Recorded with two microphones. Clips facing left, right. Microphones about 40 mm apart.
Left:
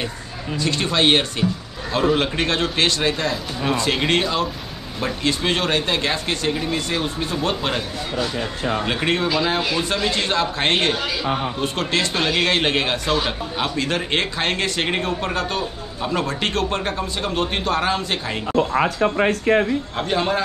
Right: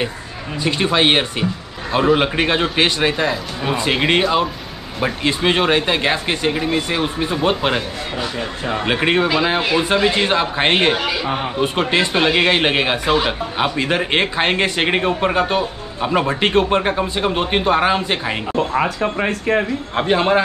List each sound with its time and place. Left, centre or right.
0.6 s a man's voice: centre
20.0 s speech: right